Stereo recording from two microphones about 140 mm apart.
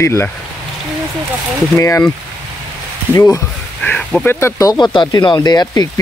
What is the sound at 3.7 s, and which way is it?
Speech, 10° left (ahead or behind).